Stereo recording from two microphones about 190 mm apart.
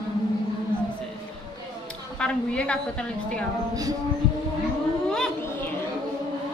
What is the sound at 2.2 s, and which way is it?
Speech, 5° left (ahead or behind).